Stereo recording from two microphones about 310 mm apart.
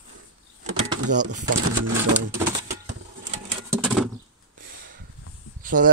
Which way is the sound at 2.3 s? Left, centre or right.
Centre.